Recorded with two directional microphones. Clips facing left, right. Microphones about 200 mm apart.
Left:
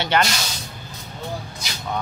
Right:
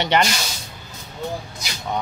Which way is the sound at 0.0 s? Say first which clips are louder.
Right 1 dB; 15° right (ahead or behind).